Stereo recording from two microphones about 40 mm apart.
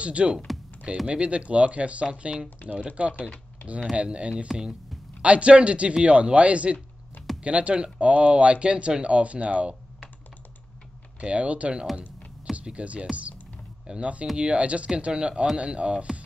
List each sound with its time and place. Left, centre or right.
0.0 s speech: right
11.1 s speech: right